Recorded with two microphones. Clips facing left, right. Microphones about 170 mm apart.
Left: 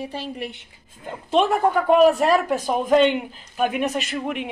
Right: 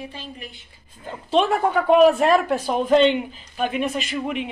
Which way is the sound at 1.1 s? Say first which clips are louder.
Even; 10° left (ahead or behind).